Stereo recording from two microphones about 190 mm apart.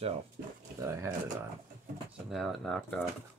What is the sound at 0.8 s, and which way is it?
Speech, 15° right (ahead or behind).